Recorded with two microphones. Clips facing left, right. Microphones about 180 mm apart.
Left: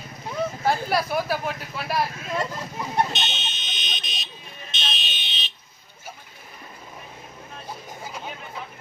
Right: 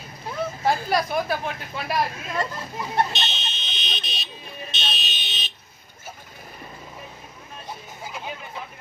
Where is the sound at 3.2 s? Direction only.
35° right (ahead or behind).